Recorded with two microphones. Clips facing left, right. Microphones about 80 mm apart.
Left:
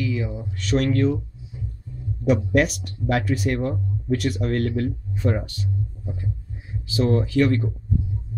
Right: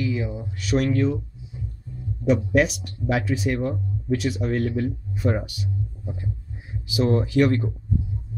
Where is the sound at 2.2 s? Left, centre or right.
Centre; by 7.6 s right.